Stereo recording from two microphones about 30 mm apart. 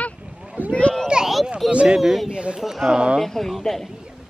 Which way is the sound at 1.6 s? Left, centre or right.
Centre.